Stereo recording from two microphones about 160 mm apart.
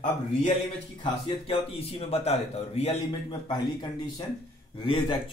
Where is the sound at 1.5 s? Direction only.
35° left (ahead or behind).